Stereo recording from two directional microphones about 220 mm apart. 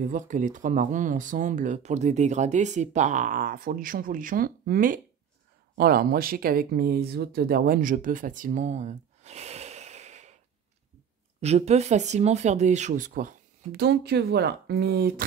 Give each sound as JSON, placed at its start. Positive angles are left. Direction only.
{"t": 0.0, "sound": "speech", "side_deg": -35}
{"t": 11.4, "sound": "speech", "side_deg": -30}